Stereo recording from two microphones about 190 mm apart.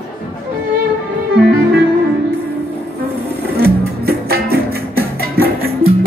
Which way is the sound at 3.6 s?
55° right (ahead or behind).